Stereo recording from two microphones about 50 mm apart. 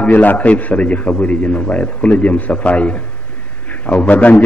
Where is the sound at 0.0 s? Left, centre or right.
Left.